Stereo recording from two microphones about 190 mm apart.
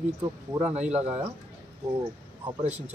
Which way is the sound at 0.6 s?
35° right (ahead or behind).